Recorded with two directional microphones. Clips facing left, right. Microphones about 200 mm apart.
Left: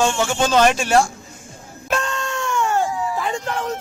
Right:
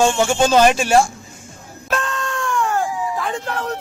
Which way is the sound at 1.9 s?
Centre (ahead or behind).